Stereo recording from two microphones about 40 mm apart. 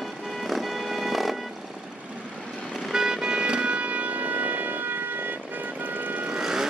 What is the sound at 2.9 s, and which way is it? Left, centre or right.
Shofar, centre.